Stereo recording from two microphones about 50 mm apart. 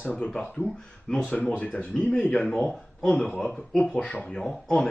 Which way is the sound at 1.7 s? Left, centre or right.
Left.